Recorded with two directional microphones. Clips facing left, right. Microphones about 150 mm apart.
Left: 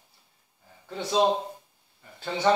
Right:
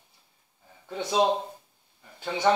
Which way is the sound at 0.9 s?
15° right (ahead or behind).